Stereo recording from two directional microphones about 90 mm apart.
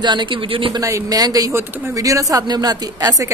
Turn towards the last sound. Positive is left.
turn(degrees=-45)  # may be behind; listen again after turning